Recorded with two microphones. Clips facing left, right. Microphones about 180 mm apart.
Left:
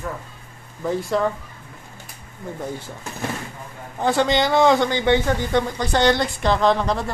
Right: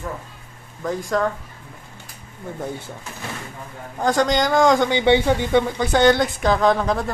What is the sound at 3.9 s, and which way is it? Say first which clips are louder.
Speech: even; 5° left (ahead or behind).